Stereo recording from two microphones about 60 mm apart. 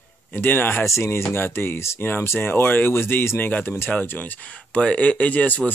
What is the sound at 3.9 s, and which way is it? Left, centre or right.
Speech, left.